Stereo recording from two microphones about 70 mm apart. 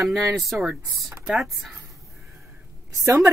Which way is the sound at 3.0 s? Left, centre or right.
Right.